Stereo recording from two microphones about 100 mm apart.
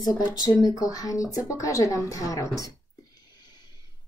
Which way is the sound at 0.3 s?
40° left (ahead or behind).